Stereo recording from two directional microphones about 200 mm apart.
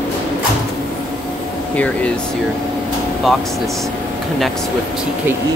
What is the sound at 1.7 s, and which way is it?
Speech, 5° left (ahead or behind).